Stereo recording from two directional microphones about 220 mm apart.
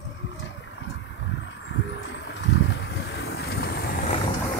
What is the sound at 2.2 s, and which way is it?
Vehicle, 50° left (ahead or behind).